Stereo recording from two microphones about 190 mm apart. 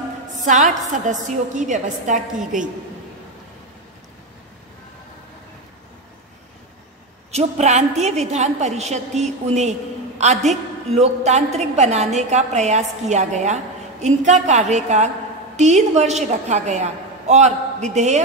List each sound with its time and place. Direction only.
0.5 s a woman's voice: 40° right (ahead or behind)
7.2 s a woman's voice: 35° right (ahead or behind)